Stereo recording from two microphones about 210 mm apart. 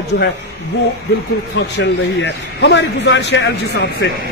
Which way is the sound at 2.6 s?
55° left (ahead or behind).